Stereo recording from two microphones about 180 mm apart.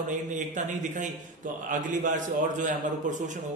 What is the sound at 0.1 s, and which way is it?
A man's voice, 45° right (ahead or behind).